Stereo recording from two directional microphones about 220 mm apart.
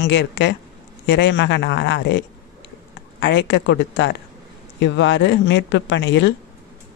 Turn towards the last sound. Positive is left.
turn(degrees=55)  # may be behind; listen again after turning